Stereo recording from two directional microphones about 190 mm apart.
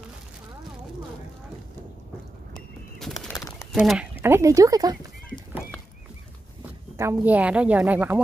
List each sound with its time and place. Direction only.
2.5 s a sound: centre (ahead or behind)
3.7 s speech: 5° right (ahead or behind)
4.2 s speech: 15° right (ahead or behind)
7.2 s speech: 5° right (ahead or behind)